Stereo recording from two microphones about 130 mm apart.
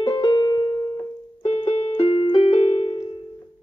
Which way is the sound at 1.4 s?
50° left (ahead or behind).